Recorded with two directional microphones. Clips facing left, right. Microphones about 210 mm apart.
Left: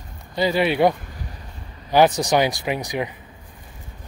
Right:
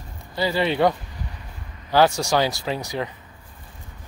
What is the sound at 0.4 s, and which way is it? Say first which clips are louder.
Speech: left 2 dB; 15° left (ahead or behind).